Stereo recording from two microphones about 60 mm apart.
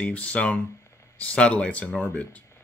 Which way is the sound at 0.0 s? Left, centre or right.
Left.